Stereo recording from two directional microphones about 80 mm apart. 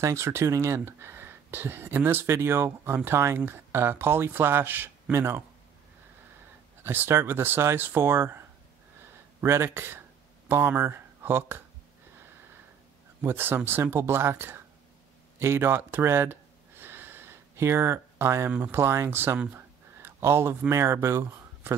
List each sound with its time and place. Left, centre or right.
0.0 s speech: right
6.8 s speech: right
13.2 s speech: right
15.3 s a sound: right
18.7 s speech: right